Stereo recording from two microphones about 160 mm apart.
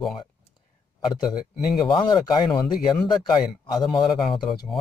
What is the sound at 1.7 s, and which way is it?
Speech, 30° left (ahead or behind).